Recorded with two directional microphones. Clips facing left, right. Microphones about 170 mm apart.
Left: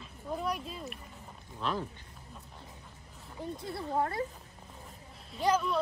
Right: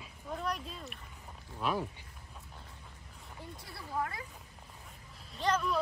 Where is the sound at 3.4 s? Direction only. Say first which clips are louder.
Left 11 dB; 20° left (ahead or behind).